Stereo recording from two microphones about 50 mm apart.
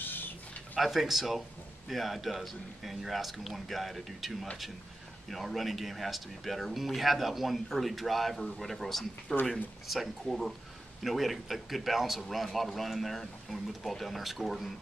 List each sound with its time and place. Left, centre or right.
0.0 s a sound: left
0.7 s speech: centre
9.3 s speech: centre
9.8 s speech: centre